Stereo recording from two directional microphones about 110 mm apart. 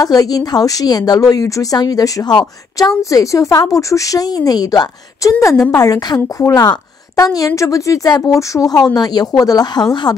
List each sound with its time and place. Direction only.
0.0 s a woman's voice: 35° left (ahead or behind)